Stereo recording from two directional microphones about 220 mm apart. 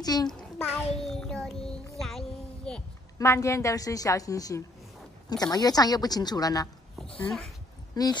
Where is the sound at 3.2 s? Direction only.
15° left (ahead or behind).